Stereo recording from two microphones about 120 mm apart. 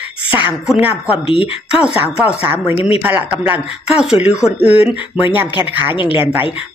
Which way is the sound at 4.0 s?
5° right (ahead or behind).